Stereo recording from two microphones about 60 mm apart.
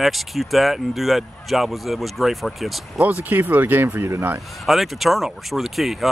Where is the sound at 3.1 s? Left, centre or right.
Right.